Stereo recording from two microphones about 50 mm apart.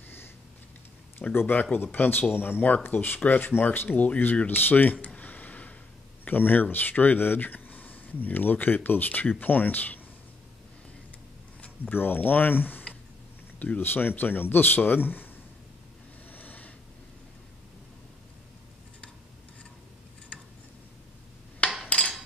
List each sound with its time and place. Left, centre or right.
1.3 s speech: left
1.6 s speech: left
5.0 s a sound: left
6.2 s speech: left
11.6 s speech: left
16.3 s snort: left
20.3 s tick-tock: left
21.8 s cutlery: left